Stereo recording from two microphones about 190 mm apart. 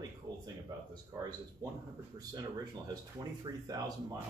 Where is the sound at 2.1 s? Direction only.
20° right (ahead or behind).